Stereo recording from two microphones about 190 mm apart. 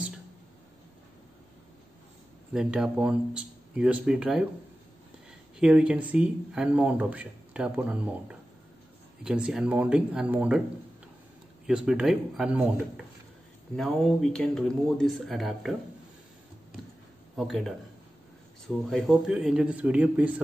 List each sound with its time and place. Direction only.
2.5 s speech: 5° right (ahead or behind)
5.6 s speech: 5° right (ahead or behind)
11.6 s speech: 5° right (ahead or behind)
17.4 s speech: centre (ahead or behind)
18.9 s speech: centre (ahead or behind)